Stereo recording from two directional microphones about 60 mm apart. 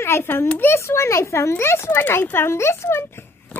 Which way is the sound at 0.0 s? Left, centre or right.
Left.